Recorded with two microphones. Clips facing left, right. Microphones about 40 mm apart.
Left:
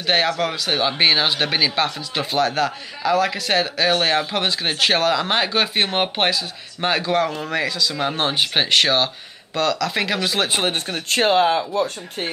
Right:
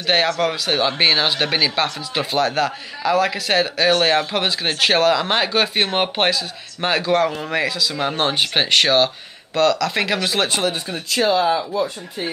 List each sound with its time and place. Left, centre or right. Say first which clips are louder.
0.0 s speech: right 1 dB; centre
10.6 s speech: even; left